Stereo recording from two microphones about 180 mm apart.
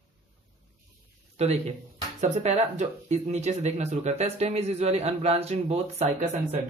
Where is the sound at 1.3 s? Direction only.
35° right (ahead or behind).